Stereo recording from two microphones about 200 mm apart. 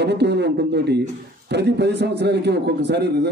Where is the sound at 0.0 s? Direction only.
55° right (ahead or behind).